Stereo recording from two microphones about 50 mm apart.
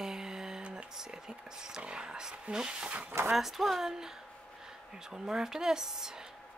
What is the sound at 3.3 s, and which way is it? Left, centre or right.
A woman's voice, centre.